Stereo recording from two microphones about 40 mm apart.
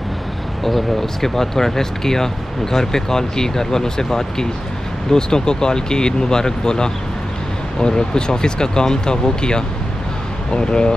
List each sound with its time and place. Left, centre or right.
0.7 s speech: centre